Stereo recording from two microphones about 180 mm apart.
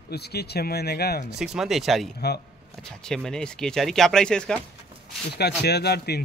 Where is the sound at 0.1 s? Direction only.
65° left (ahead or behind).